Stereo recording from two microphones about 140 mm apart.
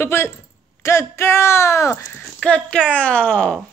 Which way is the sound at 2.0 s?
10° left (ahead or behind).